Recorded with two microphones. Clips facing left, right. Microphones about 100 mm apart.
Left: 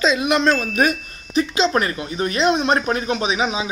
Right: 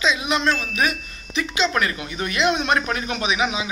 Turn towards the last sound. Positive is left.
turn(degrees=30)  # may be behind; listen again after turning